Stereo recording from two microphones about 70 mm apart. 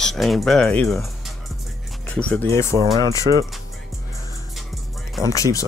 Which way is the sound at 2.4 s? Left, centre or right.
Left.